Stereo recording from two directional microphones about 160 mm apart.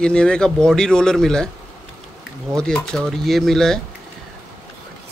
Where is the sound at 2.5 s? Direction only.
5° left (ahead or behind).